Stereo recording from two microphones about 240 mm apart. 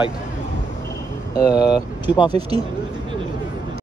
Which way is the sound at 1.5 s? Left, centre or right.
Centre.